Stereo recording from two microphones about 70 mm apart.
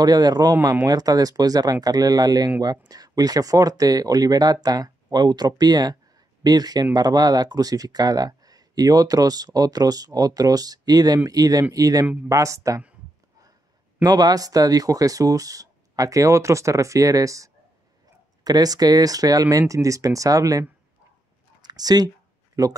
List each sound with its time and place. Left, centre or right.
0.0 s speech: right
14.0 s speech: right
18.4 s speech: right
21.6 s speech: right
22.6 s speech: right